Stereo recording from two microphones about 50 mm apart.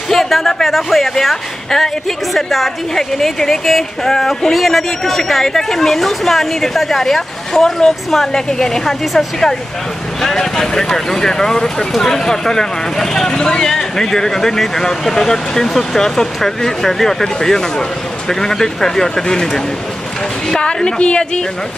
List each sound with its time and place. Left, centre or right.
0.1 s a woman's voice: centre